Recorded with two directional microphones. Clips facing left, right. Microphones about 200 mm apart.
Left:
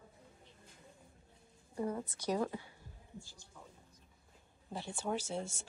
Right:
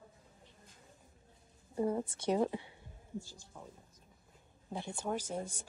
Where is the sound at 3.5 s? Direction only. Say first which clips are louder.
Right 5 dB; 35° right (ahead or behind).